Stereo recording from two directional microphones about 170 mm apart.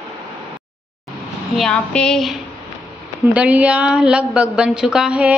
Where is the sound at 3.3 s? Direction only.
10° right (ahead or behind).